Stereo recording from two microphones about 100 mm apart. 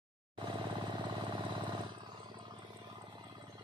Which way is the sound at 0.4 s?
50° right (ahead or behind).